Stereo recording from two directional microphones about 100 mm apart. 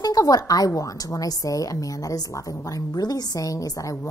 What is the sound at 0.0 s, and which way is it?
A woman's voice, 40° left (ahead or behind).